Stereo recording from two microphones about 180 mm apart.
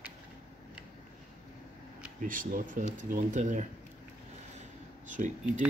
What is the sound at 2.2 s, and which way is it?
Speech, 50° right (ahead or behind).